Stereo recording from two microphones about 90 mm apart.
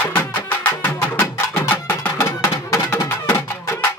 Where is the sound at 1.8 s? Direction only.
30° left (ahead or behind).